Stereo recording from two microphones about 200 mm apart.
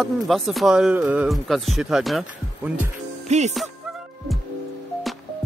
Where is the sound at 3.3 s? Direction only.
35° right (ahead or behind).